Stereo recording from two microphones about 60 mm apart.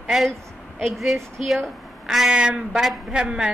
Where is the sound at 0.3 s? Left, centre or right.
Centre.